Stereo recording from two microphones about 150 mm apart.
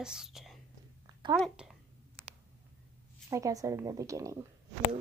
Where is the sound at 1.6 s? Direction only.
5° right (ahead or behind).